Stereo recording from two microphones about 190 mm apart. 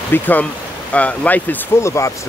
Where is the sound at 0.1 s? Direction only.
10° left (ahead or behind).